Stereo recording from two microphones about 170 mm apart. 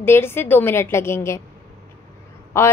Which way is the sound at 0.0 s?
15° left (ahead or behind).